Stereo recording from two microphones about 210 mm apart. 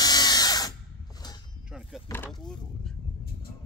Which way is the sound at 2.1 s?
5° left (ahead or behind).